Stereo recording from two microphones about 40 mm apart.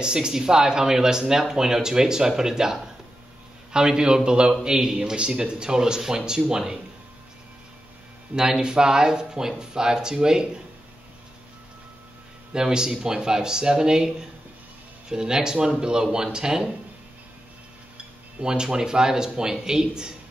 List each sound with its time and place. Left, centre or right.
0.0 s speech: centre
4.9 s speech: right
8.4 s speech: centre
12.5 s speech: centre
17.9 s speech: centre